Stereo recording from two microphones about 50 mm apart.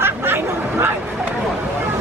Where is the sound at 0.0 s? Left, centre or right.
Right.